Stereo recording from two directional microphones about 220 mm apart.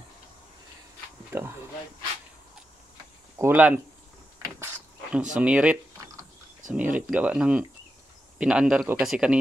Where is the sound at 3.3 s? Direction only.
10° right (ahead or behind).